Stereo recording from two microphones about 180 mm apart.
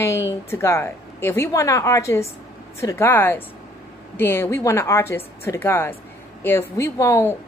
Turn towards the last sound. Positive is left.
turn(degrees=15)  # may be behind; listen again after turning